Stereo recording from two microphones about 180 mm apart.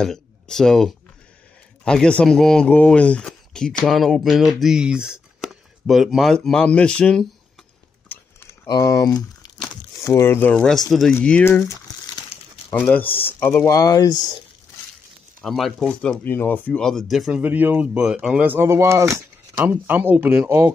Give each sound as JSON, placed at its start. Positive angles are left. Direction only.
{"t": 0.0, "sound": "speech", "side_deg": 5}
{"t": 8.6, "sound": "speech", "side_deg": 20}
{"t": 12.7, "sound": "speech", "side_deg": 10}
{"t": 15.4, "sound": "speech", "side_deg": 0}